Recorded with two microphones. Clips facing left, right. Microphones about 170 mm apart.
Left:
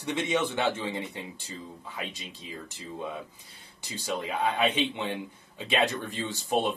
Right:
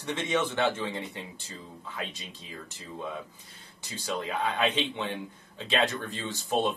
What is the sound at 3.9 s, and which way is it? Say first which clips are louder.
Speech: left 1 dB; 15° left (ahead or behind).